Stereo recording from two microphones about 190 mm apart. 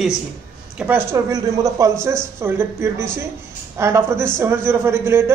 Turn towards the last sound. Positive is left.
turn(degrees=-15)  # may be behind; listen again after turning